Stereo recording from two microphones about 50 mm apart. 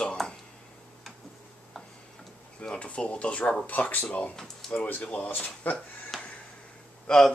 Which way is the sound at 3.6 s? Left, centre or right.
Left.